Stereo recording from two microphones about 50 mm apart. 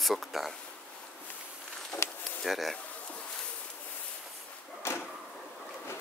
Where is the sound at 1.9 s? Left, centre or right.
Left.